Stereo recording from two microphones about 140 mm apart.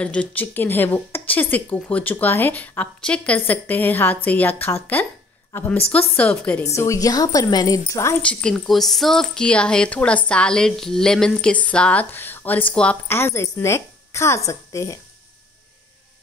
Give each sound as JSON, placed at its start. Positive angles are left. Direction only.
{"t": 0.0, "sound": "speech", "side_deg": 10}
{"t": 6.6, "sound": "a woman's voice", "side_deg": 20}
{"t": 8.2, "sound": "speech", "side_deg": 10}